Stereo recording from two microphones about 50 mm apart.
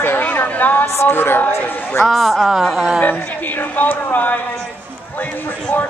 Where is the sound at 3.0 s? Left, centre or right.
Left.